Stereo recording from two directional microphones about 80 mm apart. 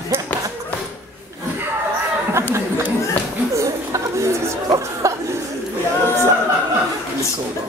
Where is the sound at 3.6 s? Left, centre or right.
Right.